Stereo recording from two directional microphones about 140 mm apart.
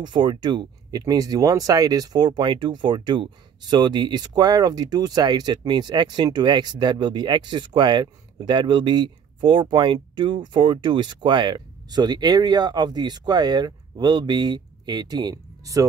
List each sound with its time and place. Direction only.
0.0 s speech: 30° right (ahead or behind)